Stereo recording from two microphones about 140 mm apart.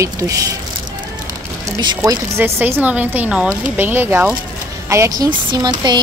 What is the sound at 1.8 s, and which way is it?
A woman's voice, 30° right (ahead or behind).